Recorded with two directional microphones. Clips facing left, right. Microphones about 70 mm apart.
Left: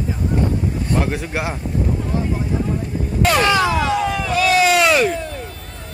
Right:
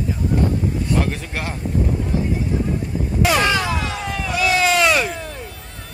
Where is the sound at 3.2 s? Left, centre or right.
Centre.